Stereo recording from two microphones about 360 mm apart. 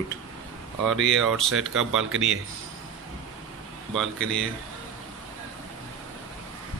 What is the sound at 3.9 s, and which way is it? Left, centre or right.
Speech, centre.